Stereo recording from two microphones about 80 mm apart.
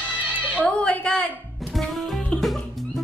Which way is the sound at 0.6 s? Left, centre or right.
Centre.